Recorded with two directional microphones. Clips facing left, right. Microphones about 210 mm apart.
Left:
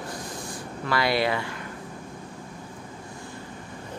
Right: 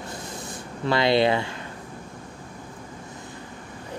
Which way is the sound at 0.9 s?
25° right (ahead or behind).